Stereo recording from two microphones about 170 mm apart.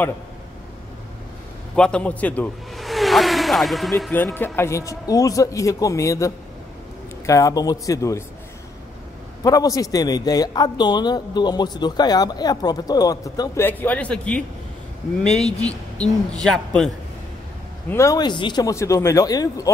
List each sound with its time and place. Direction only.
1.8 s speech: 5° left (ahead or behind)
4.1 s a man's voice: 10° left (ahead or behind)
9.4 s a man's voice: 20° left (ahead or behind); by 16.9 s 5° left (ahead or behind)
17.8 s a man's voice: 15° left (ahead or behind)